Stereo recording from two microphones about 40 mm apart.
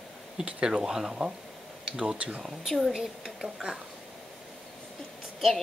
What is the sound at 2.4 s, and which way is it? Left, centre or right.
Speech, centre.